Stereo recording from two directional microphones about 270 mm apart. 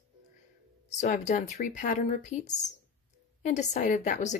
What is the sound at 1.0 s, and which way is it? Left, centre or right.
Speech, left.